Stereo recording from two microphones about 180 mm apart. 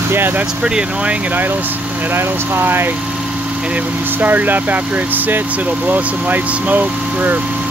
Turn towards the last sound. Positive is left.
turn(degrees=-10)  # may be behind; listen again after turning